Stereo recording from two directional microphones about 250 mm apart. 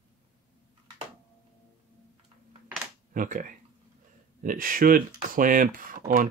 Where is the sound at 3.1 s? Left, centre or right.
Right.